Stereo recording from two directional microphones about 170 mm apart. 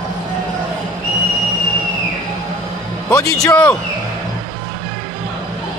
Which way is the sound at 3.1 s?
15° left (ahead or behind).